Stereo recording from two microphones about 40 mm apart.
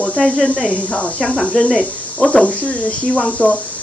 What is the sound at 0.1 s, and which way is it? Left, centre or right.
Speech, left.